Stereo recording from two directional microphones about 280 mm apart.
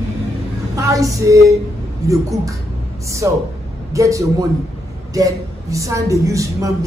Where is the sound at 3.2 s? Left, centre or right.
Centre.